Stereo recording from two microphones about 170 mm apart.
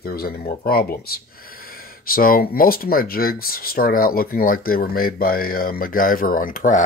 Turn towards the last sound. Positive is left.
turn(degrees=50)  # may be behind; listen again after turning